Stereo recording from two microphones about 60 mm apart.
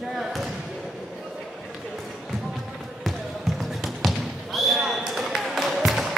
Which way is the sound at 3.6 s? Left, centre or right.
Centre.